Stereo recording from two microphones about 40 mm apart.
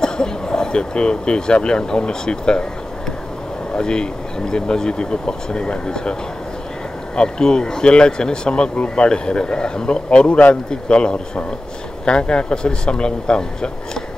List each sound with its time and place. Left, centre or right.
0.0 s speech: centre
3.7 s speech: left
7.2 s speech: centre
10.0 s a man's voice: left